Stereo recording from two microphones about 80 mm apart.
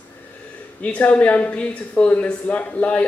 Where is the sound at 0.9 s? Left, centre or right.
Centre.